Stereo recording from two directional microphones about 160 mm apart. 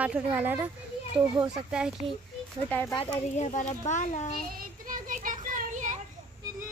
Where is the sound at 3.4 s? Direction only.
50° left (ahead or behind).